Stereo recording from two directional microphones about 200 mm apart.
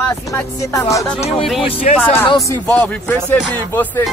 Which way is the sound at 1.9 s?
35° left (ahead or behind).